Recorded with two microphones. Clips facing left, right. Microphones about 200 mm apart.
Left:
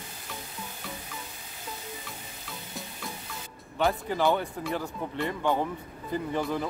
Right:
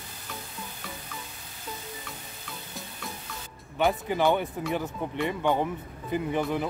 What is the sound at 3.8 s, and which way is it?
Speech, 15° right (ahead or behind).